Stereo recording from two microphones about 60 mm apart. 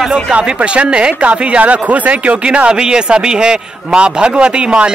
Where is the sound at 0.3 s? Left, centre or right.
Centre.